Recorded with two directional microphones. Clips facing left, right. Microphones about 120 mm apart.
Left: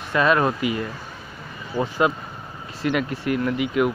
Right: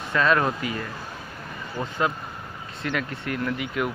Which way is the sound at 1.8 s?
10° left (ahead or behind).